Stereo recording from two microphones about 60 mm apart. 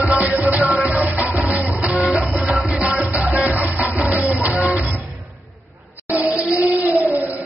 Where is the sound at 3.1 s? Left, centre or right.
Right.